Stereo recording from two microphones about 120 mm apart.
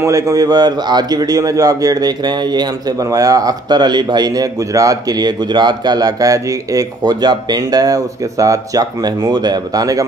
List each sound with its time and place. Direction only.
0.0 s a man's voice: 25° right (ahead or behind)